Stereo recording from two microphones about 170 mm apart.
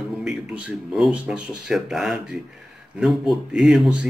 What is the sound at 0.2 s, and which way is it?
Speech, 5° right (ahead or behind).